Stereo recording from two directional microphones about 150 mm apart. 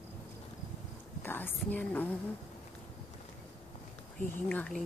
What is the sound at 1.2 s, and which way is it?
Speech, 15° left (ahead or behind).